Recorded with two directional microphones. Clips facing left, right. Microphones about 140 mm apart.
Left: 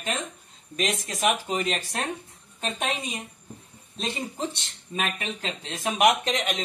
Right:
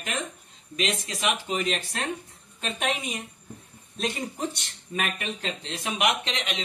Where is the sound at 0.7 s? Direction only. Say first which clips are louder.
Left 1 dB; 45° left (ahead or behind).